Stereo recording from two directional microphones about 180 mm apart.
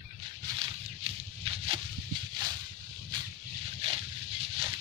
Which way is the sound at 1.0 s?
30° right (ahead or behind).